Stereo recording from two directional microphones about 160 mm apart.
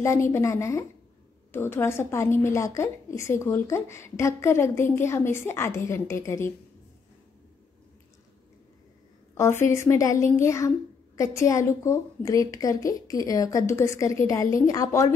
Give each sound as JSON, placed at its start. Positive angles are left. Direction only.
{"t": 0.0, "sound": "a woman's voice", "side_deg": 15}
{"t": 9.4, "sound": "a woman's voice", "side_deg": 15}